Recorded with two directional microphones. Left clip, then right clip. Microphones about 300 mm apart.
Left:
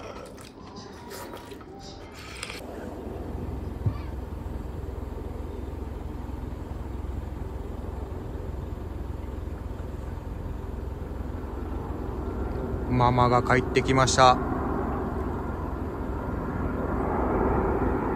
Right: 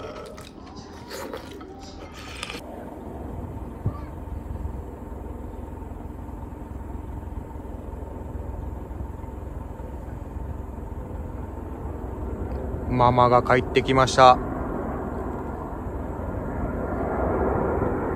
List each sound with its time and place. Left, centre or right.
12.9 s speech: centre
16.4 s vehicle: centre